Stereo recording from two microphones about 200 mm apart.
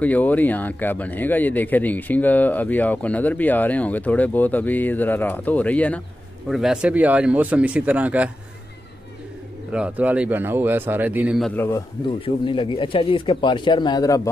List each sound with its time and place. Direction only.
0.0 s a man's voice: 10° left (ahead or behind)
9.7 s a man's voice: 5° right (ahead or behind)
11.5 s speech: 10° left (ahead or behind)
12.4 s speech: 25° left (ahead or behind)